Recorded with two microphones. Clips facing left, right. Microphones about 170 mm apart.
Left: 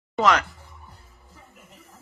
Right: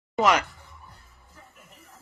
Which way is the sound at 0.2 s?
10° right (ahead or behind).